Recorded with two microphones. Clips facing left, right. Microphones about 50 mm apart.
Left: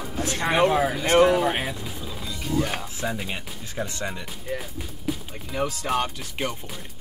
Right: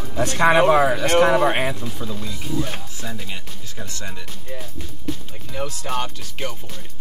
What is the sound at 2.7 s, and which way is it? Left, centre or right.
Speech, centre.